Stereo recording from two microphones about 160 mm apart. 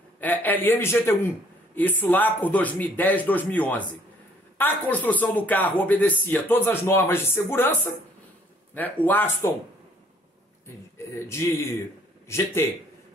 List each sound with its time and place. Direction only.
0.2 s speech: 10° left (ahead or behind)
11.1 s speech: 15° left (ahead or behind)